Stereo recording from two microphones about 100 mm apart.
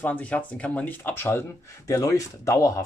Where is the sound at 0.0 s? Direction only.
15° left (ahead or behind).